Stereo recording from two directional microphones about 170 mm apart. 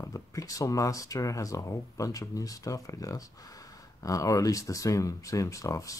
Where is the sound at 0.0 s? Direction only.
20° left (ahead or behind).